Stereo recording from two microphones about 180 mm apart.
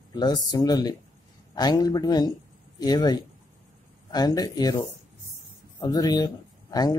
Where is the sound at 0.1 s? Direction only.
25° left (ahead or behind).